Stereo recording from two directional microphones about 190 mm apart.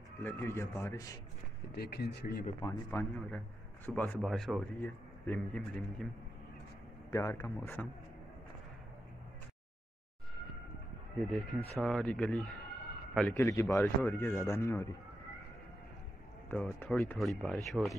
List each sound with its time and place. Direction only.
0.2 s a man's voice: 10° left (ahead or behind)
1.8 s speech: 55° left (ahead or behind)
2.6 s a man's voice: 10° left (ahead or behind)
7.1 s a man's voice: 15° left (ahead or behind)
11.3 s a man's voice: centre (ahead or behind)
16.4 s a man's voice: 10° left (ahead or behind)